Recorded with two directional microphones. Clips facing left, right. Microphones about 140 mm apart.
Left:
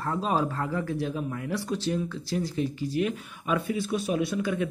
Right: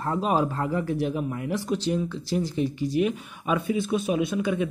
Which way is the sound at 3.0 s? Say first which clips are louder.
Right 3 dB; 15° right (ahead or behind).